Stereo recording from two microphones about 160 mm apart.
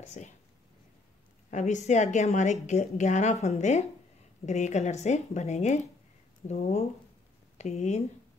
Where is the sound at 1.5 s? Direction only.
50° left (ahead or behind).